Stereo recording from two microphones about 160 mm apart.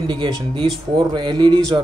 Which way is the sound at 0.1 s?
30° right (ahead or behind).